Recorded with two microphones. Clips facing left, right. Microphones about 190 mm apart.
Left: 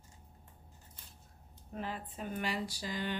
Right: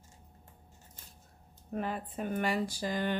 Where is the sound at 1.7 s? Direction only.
55° right (ahead or behind).